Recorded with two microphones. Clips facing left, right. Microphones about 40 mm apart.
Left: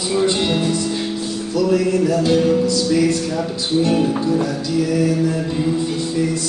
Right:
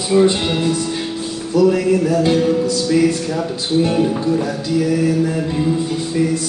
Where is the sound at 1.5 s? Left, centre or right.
Centre.